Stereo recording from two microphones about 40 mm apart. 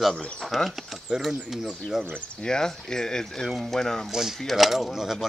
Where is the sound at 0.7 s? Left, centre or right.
Centre.